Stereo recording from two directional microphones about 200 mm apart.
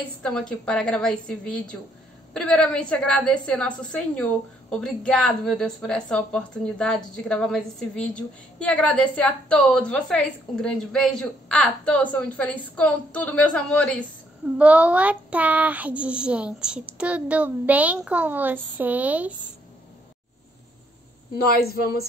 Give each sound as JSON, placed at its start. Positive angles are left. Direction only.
{"t": 0.2, "sound": "a woman's voice", "side_deg": 5}
{"t": 14.6, "sound": "speech", "side_deg": -5}
{"t": 21.5, "sound": "a woman's voice", "side_deg": 50}